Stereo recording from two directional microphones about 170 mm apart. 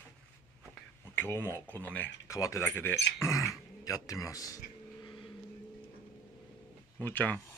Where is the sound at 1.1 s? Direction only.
15° left (ahead or behind).